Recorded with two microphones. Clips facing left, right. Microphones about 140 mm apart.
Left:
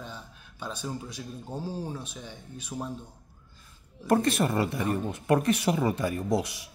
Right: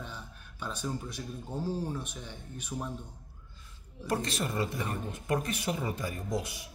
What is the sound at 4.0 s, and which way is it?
Speech, 55° left (ahead or behind).